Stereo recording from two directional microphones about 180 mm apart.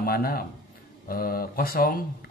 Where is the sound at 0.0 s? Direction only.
55° left (ahead or behind).